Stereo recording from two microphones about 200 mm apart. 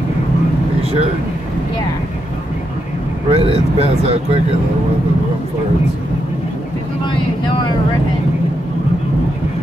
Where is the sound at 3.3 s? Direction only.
30° right (ahead or behind).